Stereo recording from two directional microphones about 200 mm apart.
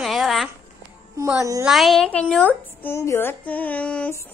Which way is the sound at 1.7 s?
Centre (ahead or behind).